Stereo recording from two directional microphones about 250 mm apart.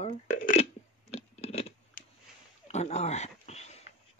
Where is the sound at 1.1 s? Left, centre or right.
Left.